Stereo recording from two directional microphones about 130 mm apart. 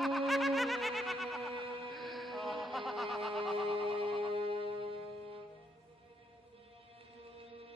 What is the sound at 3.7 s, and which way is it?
Music, 45° right (ahead or behind).